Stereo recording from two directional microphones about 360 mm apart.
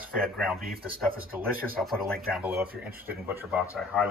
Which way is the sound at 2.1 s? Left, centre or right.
Centre.